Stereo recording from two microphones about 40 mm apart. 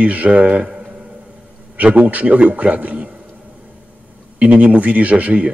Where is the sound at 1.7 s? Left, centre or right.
Right.